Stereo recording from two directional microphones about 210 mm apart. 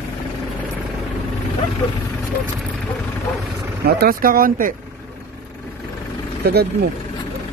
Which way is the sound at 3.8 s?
45° right (ahead or behind).